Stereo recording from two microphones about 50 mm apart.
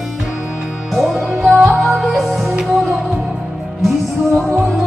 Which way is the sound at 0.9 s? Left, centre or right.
Centre.